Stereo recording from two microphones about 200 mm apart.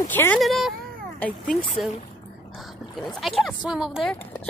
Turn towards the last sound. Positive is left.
turn(degrees=0)  # may be behind; listen again after turning